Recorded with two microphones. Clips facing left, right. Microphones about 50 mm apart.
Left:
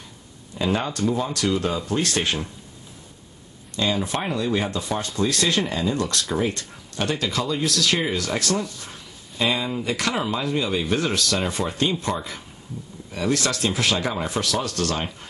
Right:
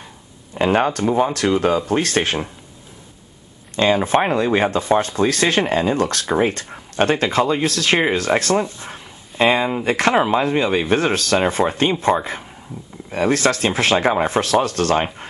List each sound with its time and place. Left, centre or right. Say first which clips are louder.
0.6 s speech: right 7 dB; right
3.7 s speech: right 8 dB; right